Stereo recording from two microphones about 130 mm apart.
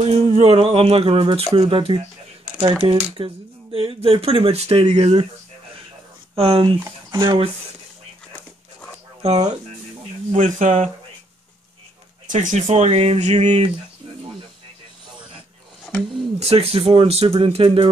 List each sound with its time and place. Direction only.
0.0 s speech: 55° right (ahead or behind)
6.3 s speech: 45° right (ahead or behind)
10.3 s speech: 65° right (ahead or behind)
12.3 s speech: 70° right (ahead or behind)
16.3 s speech: 50° right (ahead or behind)